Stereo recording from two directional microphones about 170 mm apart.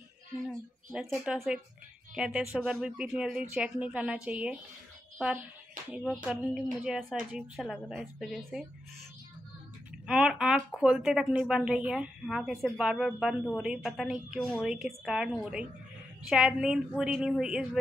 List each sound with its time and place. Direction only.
0.5 s a woman's voice: centre (ahead or behind)
6.2 s a woman's voice: 5° right (ahead or behind)
10.0 s a woman's voice: 5° right (ahead or behind)